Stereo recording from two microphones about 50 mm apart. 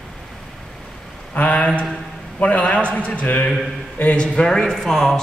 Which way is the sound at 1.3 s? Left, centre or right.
Left.